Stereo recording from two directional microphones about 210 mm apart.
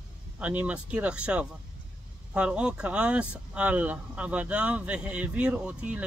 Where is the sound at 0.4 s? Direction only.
5° right (ahead or behind).